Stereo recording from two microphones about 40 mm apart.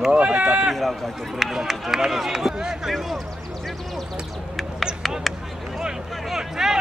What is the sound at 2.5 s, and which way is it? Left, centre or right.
Speech, centre.